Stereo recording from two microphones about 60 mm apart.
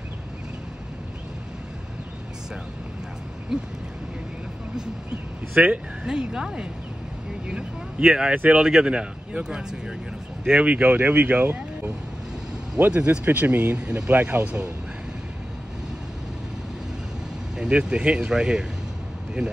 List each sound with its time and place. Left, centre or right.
3.5 s speech: centre
5.5 s speech: right
6.0 s speech: centre
8.4 s speech: right
8.6 s speech: centre; by 11.9 s right
12.9 s speech: centre
13.2 s speech: right
13.7 s speech: right
17.6 s speech: centre